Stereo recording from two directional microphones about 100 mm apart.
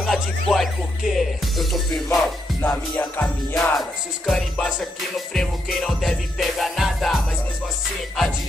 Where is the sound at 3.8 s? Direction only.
5° left (ahead or behind).